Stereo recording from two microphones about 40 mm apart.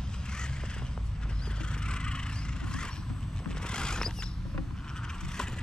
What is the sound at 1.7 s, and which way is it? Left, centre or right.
Vehicle, left.